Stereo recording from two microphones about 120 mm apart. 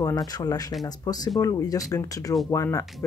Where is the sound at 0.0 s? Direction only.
30° left (ahead or behind).